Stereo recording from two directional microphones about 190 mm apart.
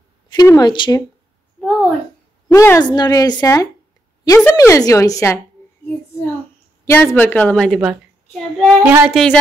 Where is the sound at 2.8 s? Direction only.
20° left (ahead or behind).